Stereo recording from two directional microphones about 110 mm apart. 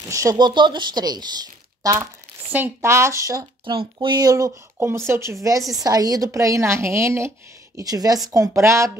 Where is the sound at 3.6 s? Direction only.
50° right (ahead or behind).